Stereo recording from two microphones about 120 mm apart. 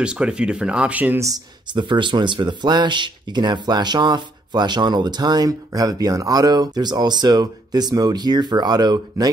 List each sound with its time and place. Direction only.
0.0 s speech: 10° right (ahead or behind)
1.2 s speech: 35° right (ahead or behind)